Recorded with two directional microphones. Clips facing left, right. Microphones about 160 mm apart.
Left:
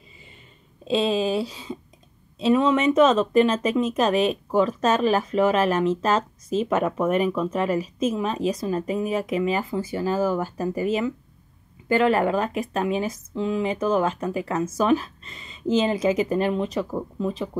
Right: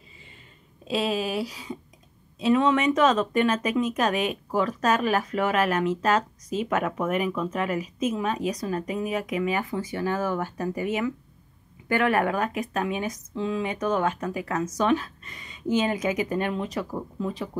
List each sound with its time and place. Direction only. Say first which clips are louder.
0.8 s speech: left 4 dB; 25° left (ahead or behind)